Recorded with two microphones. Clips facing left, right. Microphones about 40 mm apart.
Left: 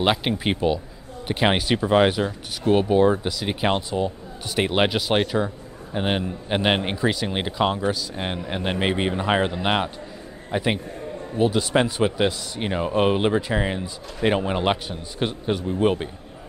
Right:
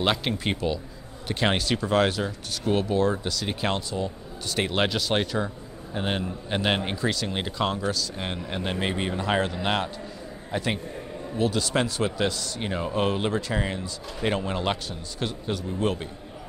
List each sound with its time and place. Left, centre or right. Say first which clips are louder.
0.0 s a man's voice: left 4 dB; centre